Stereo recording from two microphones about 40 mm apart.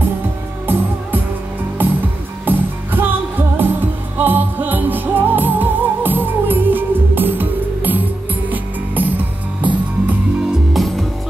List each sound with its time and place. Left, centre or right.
0.7 s music: right
2.4 s music: right
4.2 s music: right
10.7 s music: centre